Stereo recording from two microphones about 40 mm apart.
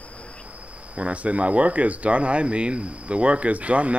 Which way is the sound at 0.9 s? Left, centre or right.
Right.